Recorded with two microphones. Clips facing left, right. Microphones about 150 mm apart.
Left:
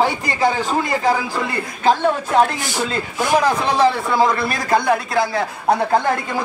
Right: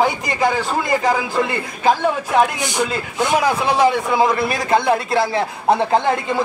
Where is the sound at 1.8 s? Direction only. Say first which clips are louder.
Left 1 dB; 15° right (ahead or behind).